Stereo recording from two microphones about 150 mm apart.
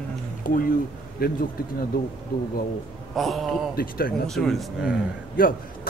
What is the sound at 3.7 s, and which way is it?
Speech, 75° left (ahead or behind).